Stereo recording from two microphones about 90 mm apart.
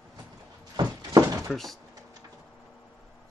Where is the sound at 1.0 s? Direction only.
35° right (ahead or behind).